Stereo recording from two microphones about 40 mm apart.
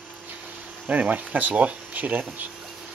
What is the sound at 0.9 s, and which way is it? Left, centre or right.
Speech, right.